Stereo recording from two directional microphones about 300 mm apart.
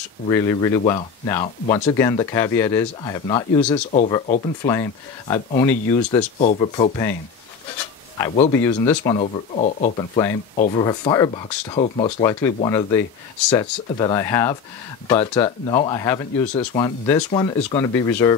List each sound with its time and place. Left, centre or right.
0.3 s speech: centre
8.2 s speech: centre